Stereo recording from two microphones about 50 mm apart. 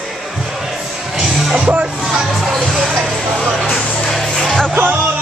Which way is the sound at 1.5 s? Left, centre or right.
Right.